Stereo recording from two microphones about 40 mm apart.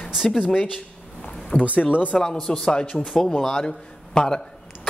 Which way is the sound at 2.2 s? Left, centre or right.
Centre.